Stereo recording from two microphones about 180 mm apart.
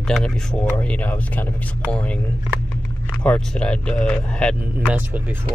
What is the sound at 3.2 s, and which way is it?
Speech, 5° left (ahead or behind).